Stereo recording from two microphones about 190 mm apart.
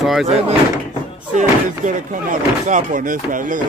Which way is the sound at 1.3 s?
40° right (ahead or behind).